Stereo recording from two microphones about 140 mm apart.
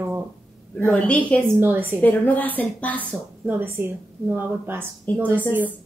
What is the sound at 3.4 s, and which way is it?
A woman's voice, 15° right (ahead or behind).